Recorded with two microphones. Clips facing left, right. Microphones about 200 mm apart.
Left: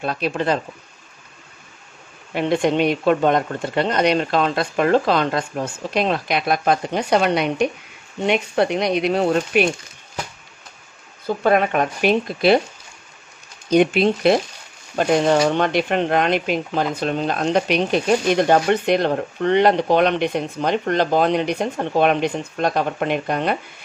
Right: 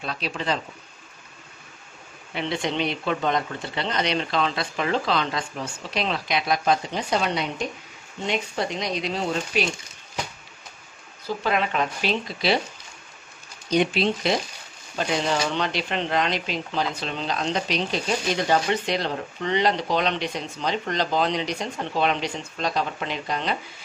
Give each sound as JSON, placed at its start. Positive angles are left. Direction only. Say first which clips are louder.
{"t": 0.0, "sound": "speech", "louder": "left 8 dB", "side_deg": 50}
{"t": 2.3, "sound": "speech", "louder": "left 8 dB", "side_deg": 50}
{"t": 11.2, "sound": "speech", "louder": "left 7 dB", "side_deg": 50}
{"t": 13.7, "sound": "speech", "louder": "left 6 dB", "side_deg": 50}